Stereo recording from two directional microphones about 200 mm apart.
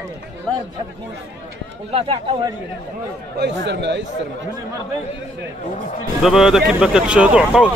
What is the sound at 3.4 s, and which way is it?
Speech, 65° right (ahead or behind).